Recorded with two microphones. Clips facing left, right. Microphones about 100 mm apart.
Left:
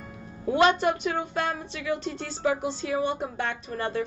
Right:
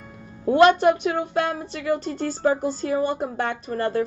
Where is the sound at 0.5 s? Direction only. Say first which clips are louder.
Right 6 dB; 55° right (ahead or behind).